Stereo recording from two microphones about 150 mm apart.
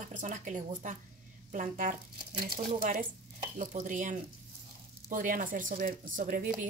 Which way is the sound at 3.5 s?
55° right (ahead or behind).